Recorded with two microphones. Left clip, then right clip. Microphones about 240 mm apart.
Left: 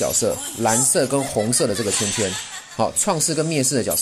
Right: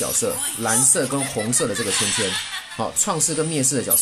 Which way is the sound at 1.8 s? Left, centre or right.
Centre.